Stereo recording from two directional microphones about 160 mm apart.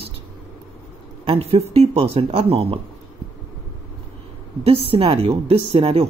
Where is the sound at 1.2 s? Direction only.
35° right (ahead or behind).